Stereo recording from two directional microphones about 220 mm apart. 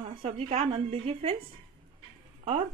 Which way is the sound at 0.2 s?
30° right (ahead or behind).